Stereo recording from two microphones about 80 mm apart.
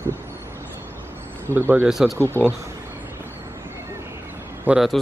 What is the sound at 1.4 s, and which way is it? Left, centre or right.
Speech, right.